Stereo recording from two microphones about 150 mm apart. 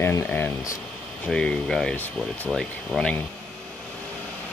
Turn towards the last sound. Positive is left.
turn(degrees=5)  # may be behind; listen again after turning